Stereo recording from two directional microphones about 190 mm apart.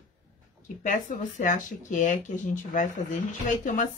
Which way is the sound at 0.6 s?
45° left (ahead or behind).